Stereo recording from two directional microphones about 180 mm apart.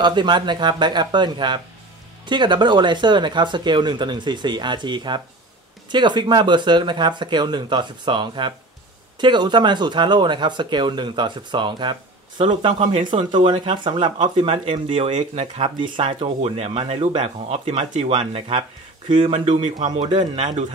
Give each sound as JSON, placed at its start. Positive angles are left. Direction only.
{"t": 0.0, "sound": "speech", "side_deg": -25}